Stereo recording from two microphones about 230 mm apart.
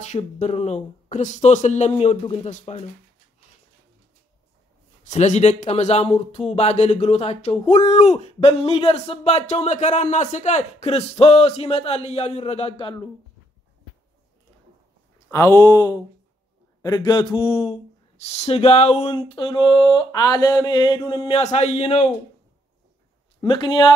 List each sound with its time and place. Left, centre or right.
0.0 s speech: left
5.0 s speech: left
15.2 s speech: centre
21.4 s speech: left
23.4 s speech: centre